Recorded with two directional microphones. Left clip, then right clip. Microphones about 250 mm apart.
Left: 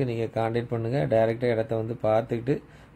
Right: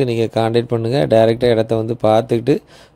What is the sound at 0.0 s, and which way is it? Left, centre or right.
Speech, right.